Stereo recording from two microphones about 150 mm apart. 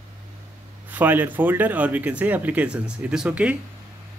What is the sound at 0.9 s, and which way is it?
Speech, 10° right (ahead or behind).